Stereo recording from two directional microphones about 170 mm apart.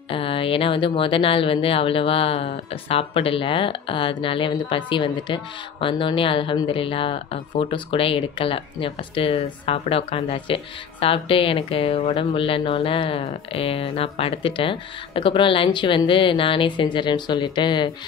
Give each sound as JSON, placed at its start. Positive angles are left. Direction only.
{"t": 0.1, "sound": "speech", "side_deg": 30}